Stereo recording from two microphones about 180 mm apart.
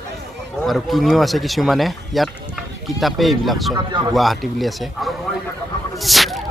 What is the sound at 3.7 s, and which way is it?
Speech, 25° right (ahead or behind).